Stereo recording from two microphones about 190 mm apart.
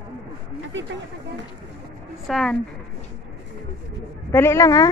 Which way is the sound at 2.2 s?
Centre (ahead or behind).